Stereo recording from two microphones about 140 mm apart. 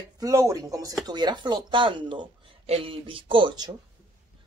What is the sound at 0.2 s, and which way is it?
Speech, 25° right (ahead or behind).